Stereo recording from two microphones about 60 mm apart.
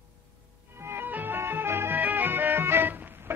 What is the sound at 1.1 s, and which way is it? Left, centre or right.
Music, right.